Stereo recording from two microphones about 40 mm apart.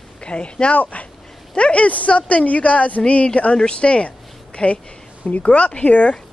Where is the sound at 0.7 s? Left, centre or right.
Left.